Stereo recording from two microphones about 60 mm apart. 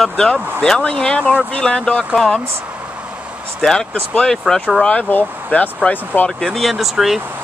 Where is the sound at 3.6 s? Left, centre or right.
Centre.